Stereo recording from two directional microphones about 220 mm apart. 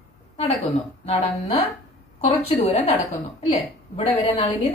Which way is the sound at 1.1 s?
30° left (ahead or behind).